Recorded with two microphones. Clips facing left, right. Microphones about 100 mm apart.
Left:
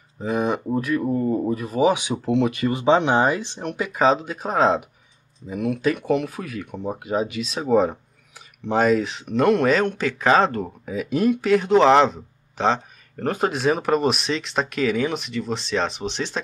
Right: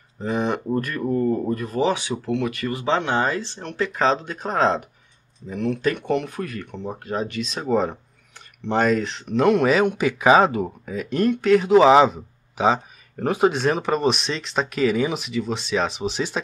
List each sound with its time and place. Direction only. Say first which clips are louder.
0.2 s speech: left 1 dB; 5° left (ahead or behind)